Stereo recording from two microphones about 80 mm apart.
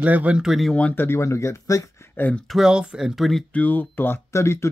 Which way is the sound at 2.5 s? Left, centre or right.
Centre.